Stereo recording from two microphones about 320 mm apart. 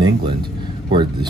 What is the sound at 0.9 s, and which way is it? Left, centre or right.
Speech, centre.